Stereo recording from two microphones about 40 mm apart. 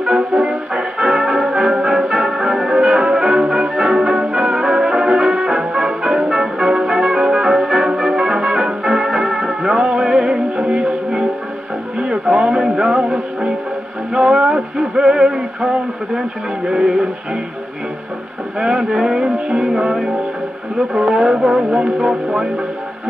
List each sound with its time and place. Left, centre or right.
0.0 s music: right
10.6 s music: right
12.0 s a sound: right
14.1 s music: right
14.5 s male singing: centre
16.6 s speech: centre
18.6 s music: right
20.9 s speech: centre
21.6 s music: right